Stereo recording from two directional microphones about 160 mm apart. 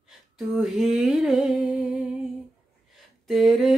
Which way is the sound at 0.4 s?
Centre (ahead or behind).